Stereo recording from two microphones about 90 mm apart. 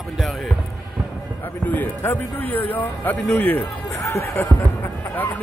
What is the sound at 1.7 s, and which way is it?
Speech, 20° left (ahead or behind).